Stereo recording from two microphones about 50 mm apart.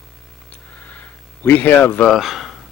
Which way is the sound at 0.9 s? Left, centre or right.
Left.